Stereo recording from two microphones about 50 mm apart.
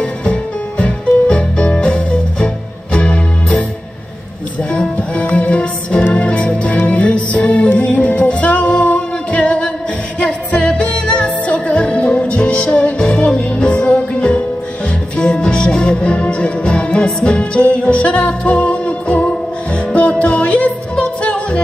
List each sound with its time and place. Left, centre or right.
0.0 s music: left
4.9 s music: left